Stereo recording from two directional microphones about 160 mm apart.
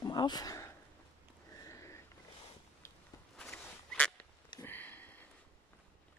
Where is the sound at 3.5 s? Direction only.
10° left (ahead or behind).